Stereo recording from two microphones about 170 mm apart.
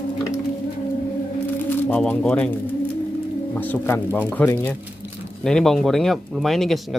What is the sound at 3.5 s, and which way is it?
Speech, 10° left (ahead or behind).